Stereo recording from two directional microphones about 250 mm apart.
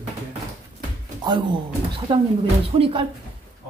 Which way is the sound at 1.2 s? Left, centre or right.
Centre.